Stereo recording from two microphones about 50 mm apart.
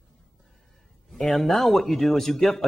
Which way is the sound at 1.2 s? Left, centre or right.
Centre.